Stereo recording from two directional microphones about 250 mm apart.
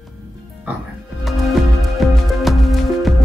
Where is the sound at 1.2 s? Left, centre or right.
Centre.